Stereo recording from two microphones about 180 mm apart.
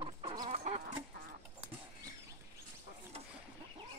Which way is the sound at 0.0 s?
30° right (ahead or behind).